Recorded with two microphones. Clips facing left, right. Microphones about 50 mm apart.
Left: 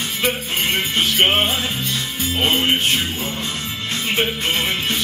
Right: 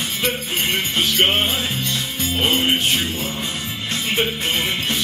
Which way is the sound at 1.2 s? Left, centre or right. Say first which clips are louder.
Left 2 dB; centre.